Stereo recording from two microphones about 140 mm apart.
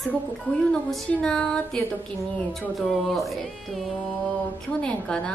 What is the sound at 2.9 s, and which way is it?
A woman's voice, centre (ahead or behind).